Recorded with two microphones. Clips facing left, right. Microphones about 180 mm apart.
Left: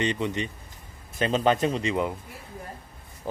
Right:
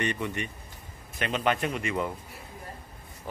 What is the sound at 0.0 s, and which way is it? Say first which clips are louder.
Speech: left 4 dB; 20° left (ahead or behind).